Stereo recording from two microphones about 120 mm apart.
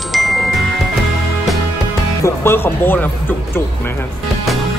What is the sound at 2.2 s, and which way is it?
Speech, 20° left (ahead or behind).